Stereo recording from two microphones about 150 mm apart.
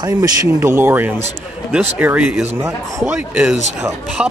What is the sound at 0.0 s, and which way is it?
Speech, 25° right (ahead or behind).